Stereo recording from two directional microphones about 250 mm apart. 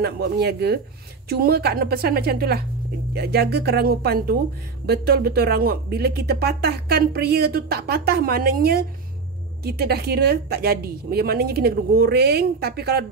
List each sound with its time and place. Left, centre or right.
0.0 s speech: right